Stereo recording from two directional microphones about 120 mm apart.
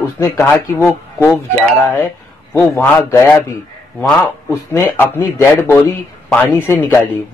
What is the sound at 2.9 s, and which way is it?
Speech, 25° left (ahead or behind).